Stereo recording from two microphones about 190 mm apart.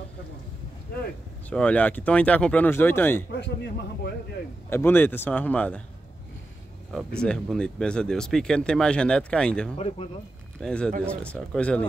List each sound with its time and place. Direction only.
1.5 s speech: 5° left (ahead or behind)
3.3 s a man's voice: 65° left (ahead or behind)
4.6 s speech: 10° left (ahead or behind)
6.9 s speech: 5° left (ahead or behind)
9.8 s speech: 30° left (ahead or behind)
10.6 s speech: 5° left (ahead or behind)